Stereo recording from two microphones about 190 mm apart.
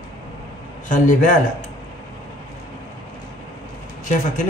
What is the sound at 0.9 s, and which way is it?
Speech, 40° left (ahead or behind).